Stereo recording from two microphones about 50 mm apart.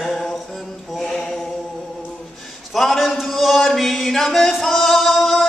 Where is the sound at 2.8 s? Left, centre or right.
Centre.